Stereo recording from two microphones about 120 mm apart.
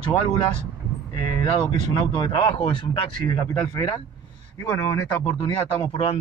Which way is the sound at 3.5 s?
30° left (ahead or behind).